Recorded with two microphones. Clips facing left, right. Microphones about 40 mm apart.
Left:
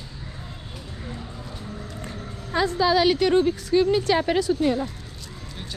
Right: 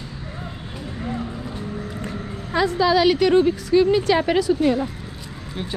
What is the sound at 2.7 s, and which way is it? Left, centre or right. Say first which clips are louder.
A woman's voice: right 3 dB; right.